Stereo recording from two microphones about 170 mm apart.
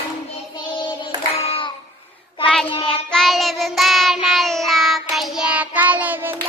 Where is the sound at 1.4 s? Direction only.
35° left (ahead or behind).